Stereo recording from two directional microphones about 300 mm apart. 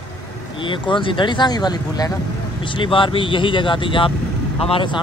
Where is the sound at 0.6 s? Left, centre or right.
Centre.